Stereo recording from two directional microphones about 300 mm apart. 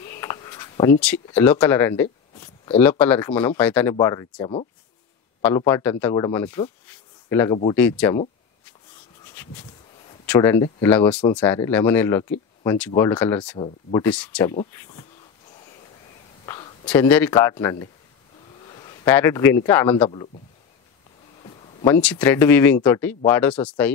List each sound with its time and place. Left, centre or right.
0.0 s speech: centre
6.9 s a sound: centre
7.7 s speech: centre
9.2 s speech: centre
16.4 s a sound: centre
16.8 s a man's voice: centre
21.4 s speech: centre